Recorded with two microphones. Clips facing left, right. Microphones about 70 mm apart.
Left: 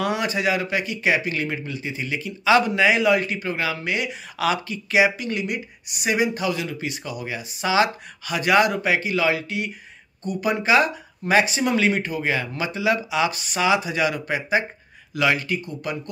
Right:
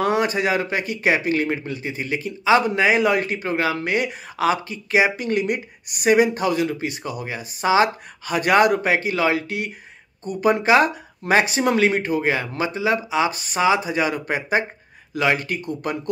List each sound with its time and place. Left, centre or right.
0.0 s speech: right